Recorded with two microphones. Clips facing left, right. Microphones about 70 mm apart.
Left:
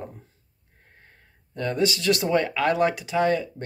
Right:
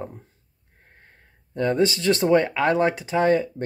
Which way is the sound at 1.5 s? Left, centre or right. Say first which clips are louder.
Right 4 dB; right.